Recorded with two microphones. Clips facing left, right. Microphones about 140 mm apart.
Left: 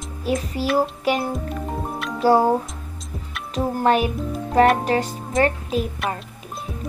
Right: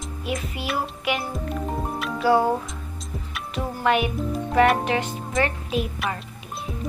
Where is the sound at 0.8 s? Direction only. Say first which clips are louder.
Left 6 dB; 35° left (ahead or behind).